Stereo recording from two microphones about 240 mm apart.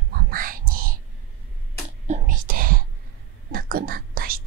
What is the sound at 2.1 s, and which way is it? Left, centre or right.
Whispering, right.